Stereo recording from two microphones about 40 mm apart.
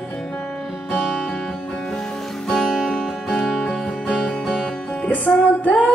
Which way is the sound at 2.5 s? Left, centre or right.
Centre.